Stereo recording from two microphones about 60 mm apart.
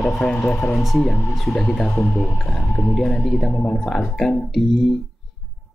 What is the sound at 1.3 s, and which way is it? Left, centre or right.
Speech, centre.